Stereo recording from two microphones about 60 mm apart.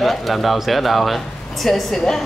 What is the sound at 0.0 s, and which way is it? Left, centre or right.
Speech, centre.